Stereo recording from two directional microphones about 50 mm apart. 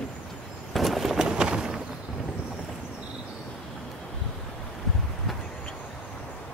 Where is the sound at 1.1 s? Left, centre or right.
Centre.